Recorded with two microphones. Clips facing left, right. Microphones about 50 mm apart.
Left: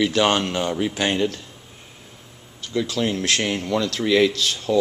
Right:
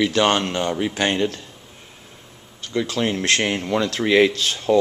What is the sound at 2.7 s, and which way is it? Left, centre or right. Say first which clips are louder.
Speech: right 1 dB; right.